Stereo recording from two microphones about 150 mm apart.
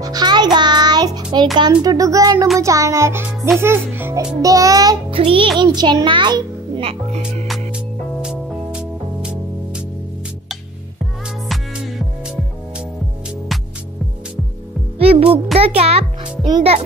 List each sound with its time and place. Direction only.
0.0 s music: 25° right (ahead or behind)
1.6 s a child's voice: 25° right (ahead or behind)
5.1 s music: 35° right (ahead or behind)
5.6 s a child's voice: 30° right (ahead or behind)
7.4 s music: 5° right (ahead or behind)
11.4 s music: centre (ahead or behind)
15.0 s a child's voice: 40° right (ahead or behind)
16.4 s speech: 30° right (ahead or behind)